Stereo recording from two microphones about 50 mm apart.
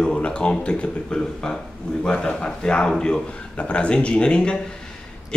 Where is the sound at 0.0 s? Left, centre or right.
Centre.